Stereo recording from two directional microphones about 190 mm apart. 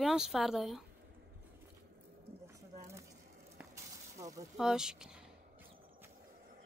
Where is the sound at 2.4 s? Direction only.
15° right (ahead or behind).